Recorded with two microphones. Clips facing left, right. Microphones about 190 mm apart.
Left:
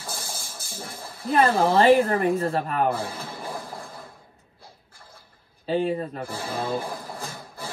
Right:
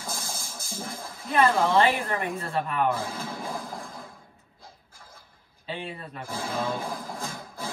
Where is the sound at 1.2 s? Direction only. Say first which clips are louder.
Left 2 dB; 35° left (ahead or behind).